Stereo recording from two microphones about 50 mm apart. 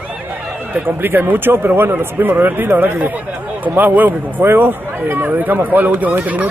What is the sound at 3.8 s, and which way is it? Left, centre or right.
A man's voice, right.